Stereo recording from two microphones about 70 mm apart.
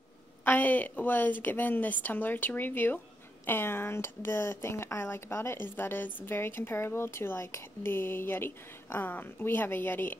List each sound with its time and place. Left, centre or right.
0.5 s a woman's voice: left